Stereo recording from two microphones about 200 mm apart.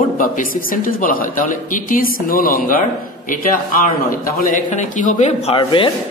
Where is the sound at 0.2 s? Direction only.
45° left (ahead or behind).